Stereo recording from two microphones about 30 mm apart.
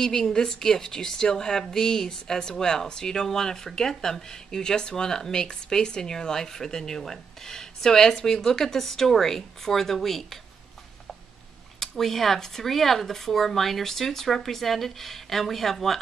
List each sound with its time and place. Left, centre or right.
0.0 s speech: left
12.0 s speech: centre